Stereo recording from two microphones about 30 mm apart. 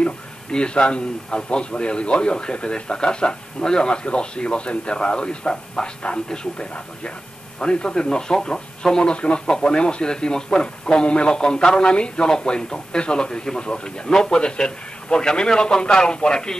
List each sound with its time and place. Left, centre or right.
0.0 s a man's voice: left
5.8 s a man's voice: centre
6.7 s a man's voice: left